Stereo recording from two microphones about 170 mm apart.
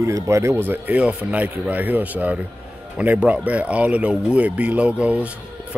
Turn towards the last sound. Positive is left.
turn(degrees=-5)  # may be behind; listen again after turning